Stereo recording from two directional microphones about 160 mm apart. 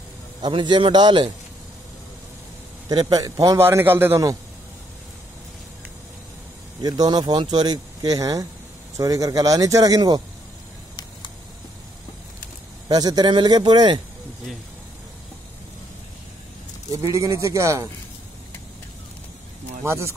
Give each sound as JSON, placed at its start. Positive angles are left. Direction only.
{"t": 0.4, "sound": "speech", "side_deg": -30}
{"t": 2.9, "sound": "speech", "side_deg": -25}
{"t": 6.8, "sound": "speech", "side_deg": -25}
{"t": 12.8, "sound": "speech", "side_deg": -25}
{"t": 16.9, "sound": "speech", "side_deg": -20}
{"t": 19.8, "sound": "speech", "side_deg": -15}